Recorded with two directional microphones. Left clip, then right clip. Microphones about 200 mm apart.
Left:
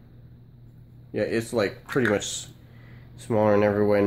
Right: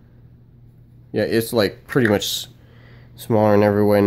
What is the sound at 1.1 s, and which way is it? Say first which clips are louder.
Speech: right 6 dB; 50° right (ahead or behind).